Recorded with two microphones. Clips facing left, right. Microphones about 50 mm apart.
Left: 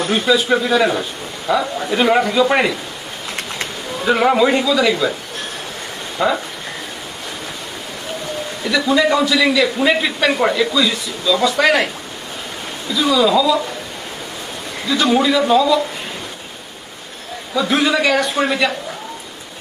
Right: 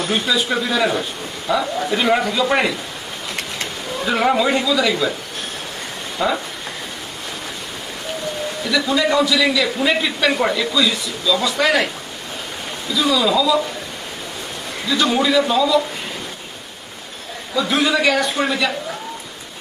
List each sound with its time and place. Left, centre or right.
0.1 s a man's voice: centre
6.1 s speech: centre
8.6 s a man's voice: centre
12.9 s a man's voice: centre
14.9 s a man's voice: centre
17.6 s a man's voice: centre